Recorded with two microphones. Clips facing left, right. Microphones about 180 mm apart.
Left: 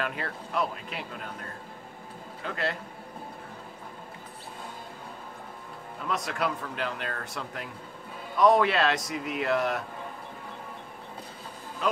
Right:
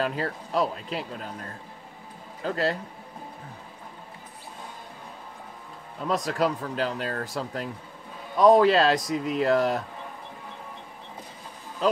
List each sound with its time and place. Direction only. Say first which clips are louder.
0.0 s speech: right 5 dB; 30° right (ahead or behind)
2.4 s speech: right 6 dB; 35° right (ahead or behind)
6.0 s speech: right 5 dB; 35° right (ahead or behind)
11.8 s speech: right 5 dB; 35° right (ahead or behind)